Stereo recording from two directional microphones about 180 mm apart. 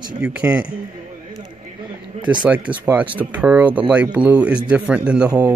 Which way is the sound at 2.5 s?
10° right (ahead or behind).